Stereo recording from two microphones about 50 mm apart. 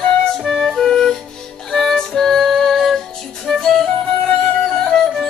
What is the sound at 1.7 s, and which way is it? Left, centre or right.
Music, centre.